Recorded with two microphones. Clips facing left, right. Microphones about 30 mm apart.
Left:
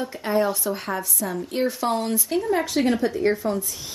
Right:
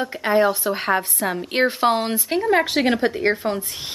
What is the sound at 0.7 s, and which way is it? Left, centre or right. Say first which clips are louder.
A woman's voice: right 6 dB; right.